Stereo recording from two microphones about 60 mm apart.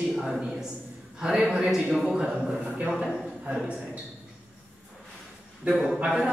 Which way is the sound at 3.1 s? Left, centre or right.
Centre.